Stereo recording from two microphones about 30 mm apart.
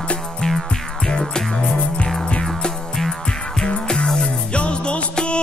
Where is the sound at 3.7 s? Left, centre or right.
Left.